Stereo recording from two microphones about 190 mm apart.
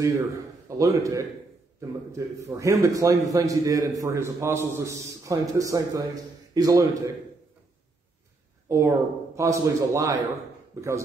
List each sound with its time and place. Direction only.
0.0 s a man's voice: 15° right (ahead or behind)
8.6 s a man's voice: 15° right (ahead or behind)